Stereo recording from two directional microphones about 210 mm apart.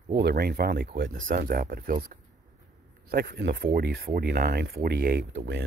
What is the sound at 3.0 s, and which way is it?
Speech, 45° right (ahead or behind).